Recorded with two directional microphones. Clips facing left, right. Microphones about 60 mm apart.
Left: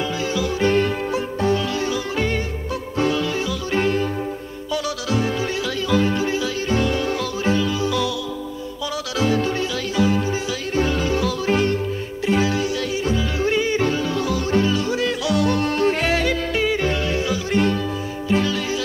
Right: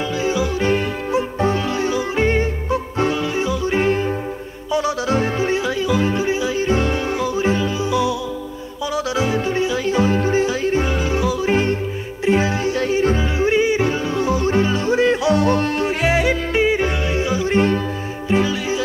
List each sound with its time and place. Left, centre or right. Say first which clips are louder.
0.2 s yodeling: right 2 dB; right
1.4 s music: left 2 dB; right
13.4 s yodeling: right 3 dB; right
15.9 s yodeling: right 2 dB; centre; by 17.7 s right
18.3 s music: right 2 dB; right